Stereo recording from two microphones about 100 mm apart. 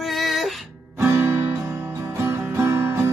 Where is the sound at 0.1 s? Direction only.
Centre (ahead or behind).